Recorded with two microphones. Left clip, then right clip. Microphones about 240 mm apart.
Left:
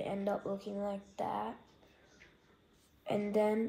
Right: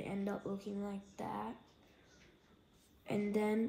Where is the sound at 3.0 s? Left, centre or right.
Centre.